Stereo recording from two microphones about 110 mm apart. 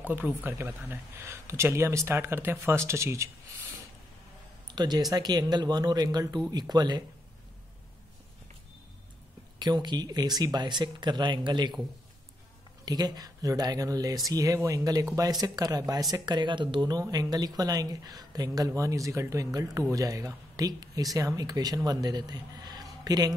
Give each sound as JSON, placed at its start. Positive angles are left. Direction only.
{"t": 0.0, "sound": "speech", "side_deg": -15}
{"t": 4.6, "sound": "speech", "side_deg": -40}
{"t": 9.6, "sound": "speech", "side_deg": -40}
{"t": 12.8, "sound": "speech", "side_deg": -35}
{"t": 16.8, "sound": "speech", "side_deg": -35}